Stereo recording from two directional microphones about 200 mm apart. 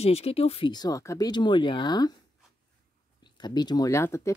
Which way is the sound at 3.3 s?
20° left (ahead or behind).